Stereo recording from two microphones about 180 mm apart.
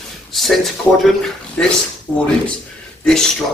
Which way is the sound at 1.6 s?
5° left (ahead or behind).